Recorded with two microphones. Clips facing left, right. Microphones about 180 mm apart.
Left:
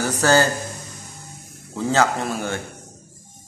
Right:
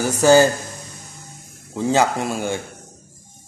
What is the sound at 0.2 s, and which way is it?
Speech, 15° right (ahead or behind).